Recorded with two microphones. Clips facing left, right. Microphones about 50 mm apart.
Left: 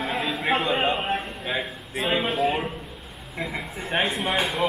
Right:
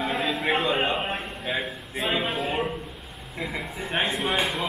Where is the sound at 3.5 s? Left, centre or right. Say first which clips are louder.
Left 2 dB; centre.